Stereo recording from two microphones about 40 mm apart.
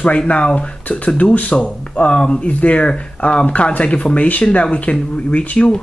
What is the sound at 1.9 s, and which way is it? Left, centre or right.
Speech, left.